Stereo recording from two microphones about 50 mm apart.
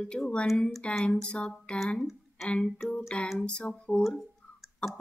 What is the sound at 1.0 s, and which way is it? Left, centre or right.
A woman's voice, centre.